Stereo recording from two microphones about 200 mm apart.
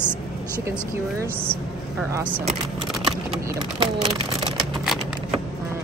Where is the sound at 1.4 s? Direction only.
10° right (ahead or behind).